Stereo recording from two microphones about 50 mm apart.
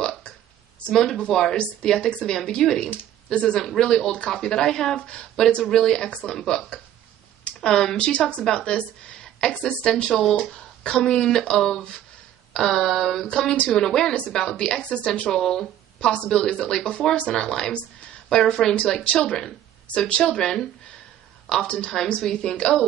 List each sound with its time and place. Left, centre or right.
0.8 s speech: centre
10.5 s speech: centre
19.0 s speech: left
19.3 s a woman's voice: centre